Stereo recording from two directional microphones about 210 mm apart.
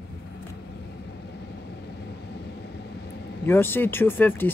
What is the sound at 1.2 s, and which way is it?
Vehicle, 50° left (ahead or behind).